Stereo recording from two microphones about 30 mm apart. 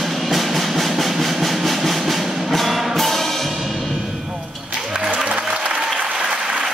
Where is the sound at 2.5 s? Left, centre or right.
Centre.